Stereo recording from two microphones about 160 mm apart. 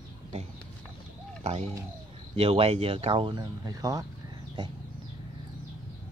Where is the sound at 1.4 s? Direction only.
40° right (ahead or behind); by 4.0 s 20° right (ahead or behind).